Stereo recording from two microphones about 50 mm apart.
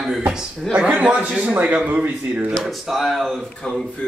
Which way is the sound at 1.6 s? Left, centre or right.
Right.